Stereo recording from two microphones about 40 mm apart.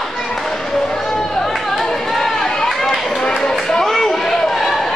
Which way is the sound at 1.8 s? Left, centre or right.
Centre.